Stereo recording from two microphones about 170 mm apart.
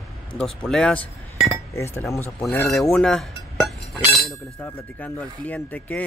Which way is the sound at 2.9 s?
5° left (ahead or behind).